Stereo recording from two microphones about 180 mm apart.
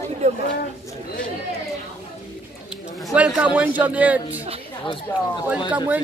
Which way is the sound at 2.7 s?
Centre (ahead or behind).